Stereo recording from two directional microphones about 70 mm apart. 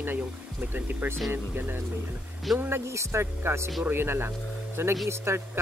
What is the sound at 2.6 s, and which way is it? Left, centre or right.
A man's voice, right.